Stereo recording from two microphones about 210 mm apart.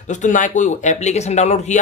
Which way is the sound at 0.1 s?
35° left (ahead or behind).